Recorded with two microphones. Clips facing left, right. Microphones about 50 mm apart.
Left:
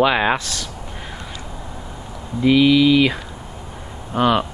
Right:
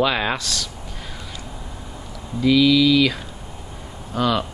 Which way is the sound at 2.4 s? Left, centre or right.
Left.